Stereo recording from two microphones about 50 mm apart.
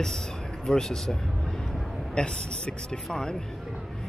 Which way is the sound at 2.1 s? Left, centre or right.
Centre.